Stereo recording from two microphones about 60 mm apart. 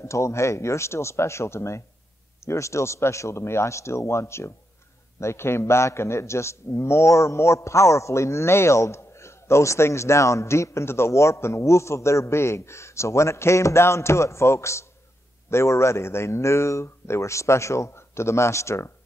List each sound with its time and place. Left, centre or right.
0.0 s a man's voice: left